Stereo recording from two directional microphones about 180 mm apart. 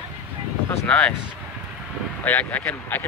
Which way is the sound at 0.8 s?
5° left (ahead or behind).